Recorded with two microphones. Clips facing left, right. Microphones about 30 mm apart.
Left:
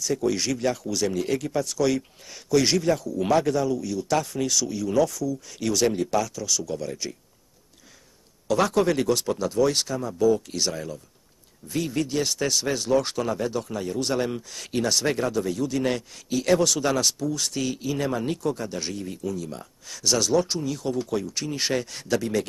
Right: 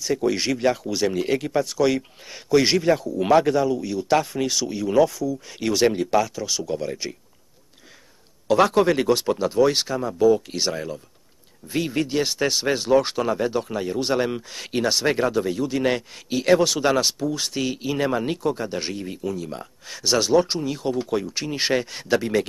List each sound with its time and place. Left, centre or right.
0.0 s speech: right
8.5 s speech: right